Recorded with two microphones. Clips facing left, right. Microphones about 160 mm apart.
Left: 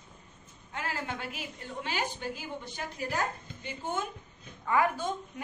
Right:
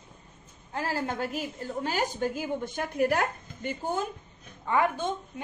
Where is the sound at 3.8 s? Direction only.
35° right (ahead or behind).